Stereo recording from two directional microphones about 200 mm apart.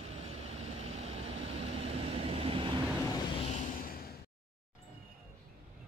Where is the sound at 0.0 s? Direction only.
30° right (ahead or behind).